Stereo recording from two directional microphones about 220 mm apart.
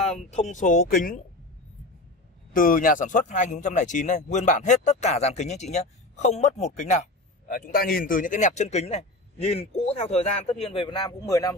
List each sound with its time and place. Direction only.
0.1 s speech: 30° left (ahead or behind)
2.5 s a man's voice: 40° left (ahead or behind); by 11.5 s 15° left (ahead or behind)